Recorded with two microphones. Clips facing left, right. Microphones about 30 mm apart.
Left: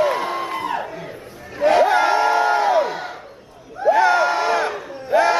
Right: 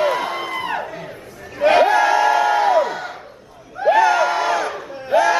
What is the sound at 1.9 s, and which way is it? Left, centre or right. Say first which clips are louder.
Crowd: right 1 dB; left.